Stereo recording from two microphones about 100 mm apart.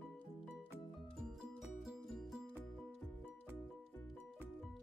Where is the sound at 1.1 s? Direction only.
5° right (ahead or behind).